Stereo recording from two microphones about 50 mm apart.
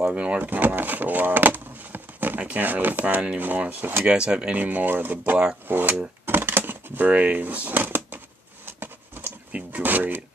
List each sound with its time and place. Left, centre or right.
0.0 s speech: right
0.5 s speech: right
4.1 s speech: centre
4.6 s speech: right
6.2 s typewriter: right
8.6 s a sound: right
9.5 s speech: right